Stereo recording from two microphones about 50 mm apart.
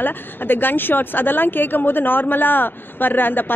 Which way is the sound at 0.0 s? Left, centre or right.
Left.